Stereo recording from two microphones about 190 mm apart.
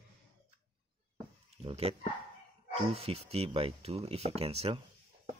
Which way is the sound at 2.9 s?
30° right (ahead or behind).